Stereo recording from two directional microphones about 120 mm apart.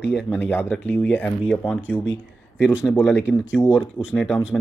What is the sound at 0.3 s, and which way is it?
Speech, 15° left (ahead or behind).